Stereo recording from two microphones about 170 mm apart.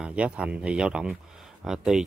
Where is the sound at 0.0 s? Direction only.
5° right (ahead or behind).